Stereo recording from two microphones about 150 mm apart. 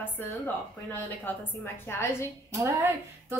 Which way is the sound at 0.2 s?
15° left (ahead or behind).